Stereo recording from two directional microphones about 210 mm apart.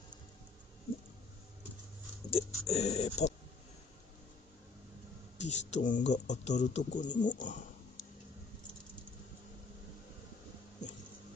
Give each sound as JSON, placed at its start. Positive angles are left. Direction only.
{"t": 2.3, "sound": "music", "side_deg": 30}
{"t": 5.4, "sound": "a man's voice", "side_deg": 35}